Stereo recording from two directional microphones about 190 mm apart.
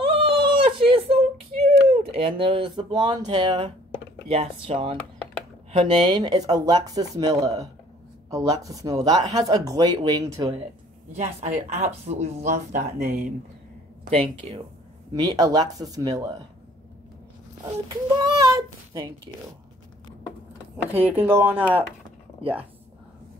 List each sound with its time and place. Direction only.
0.1 s a sound: 25° right (ahead or behind)
1.9 s speech: 30° right (ahead or behind)
11.1 s speech: 35° right (ahead or behind)
14.1 s speech: 30° right (ahead or behind)
17.8 s speech: 20° right (ahead or behind)
20.7 s speech: 10° right (ahead or behind)